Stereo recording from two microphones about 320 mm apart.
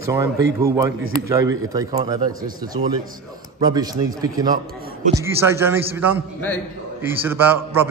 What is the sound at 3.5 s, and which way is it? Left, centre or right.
A man's voice, centre.